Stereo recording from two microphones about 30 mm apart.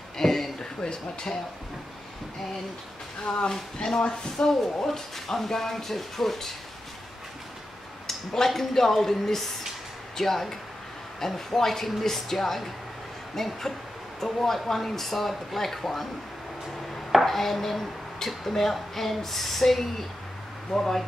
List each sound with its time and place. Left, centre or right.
0.2 s a sound: centre
0.6 s speech: left
3.8 s speech: left
4.8 s speech: centre
8.1 s speech: centre